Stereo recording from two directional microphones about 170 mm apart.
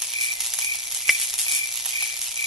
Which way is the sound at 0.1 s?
Centre (ahead or behind).